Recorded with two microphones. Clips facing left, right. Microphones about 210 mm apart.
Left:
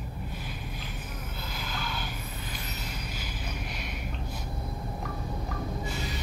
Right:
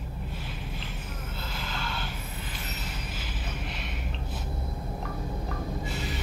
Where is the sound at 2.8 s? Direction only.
5° right (ahead or behind).